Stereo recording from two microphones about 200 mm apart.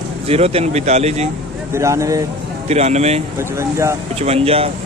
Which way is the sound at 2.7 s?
35° right (ahead or behind).